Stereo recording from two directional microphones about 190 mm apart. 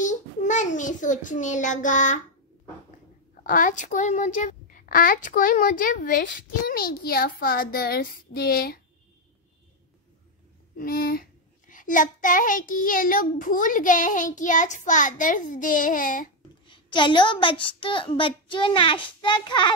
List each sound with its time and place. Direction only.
0.0 s a child's voice: 40° left (ahead or behind)
3.4 s a child's voice: 45° left (ahead or behind)
10.8 s a child's voice: 50° left (ahead or behind)
16.6 s a woman's voice: 25° left (ahead or behind)